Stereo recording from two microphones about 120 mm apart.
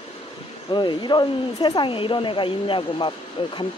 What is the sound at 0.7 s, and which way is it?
Speech, 40° left (ahead or behind).